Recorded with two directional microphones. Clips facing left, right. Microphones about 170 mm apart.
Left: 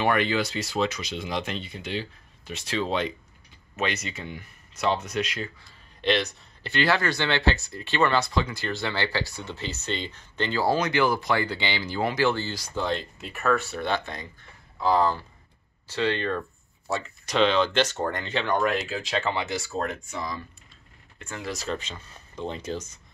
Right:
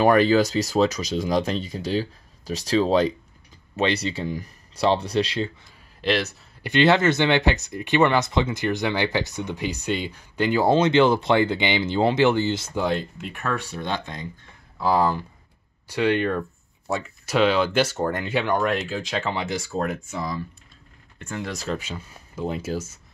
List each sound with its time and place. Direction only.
0.0 s speech: 35° right (ahead or behind)
5.9 s speech: centre (ahead or behind)
6.6 s speech: 20° right (ahead or behind)
13.3 s speech: 5° left (ahead or behind)
14.8 s speech: 10° right (ahead or behind)
18.9 s speech: centre (ahead or behind)